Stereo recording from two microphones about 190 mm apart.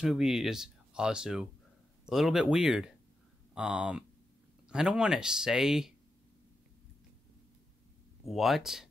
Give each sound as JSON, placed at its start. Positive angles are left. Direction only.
{"t": 0.0, "sound": "speech", "side_deg": 0}
{"t": 8.3, "sound": "speech", "side_deg": 0}